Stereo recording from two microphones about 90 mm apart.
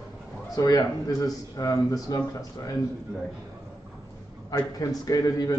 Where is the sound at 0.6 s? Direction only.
45° left (ahead or behind).